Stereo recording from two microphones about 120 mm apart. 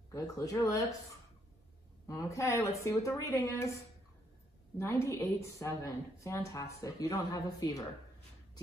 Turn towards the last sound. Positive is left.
turn(degrees=30)  # may be behind; listen again after turning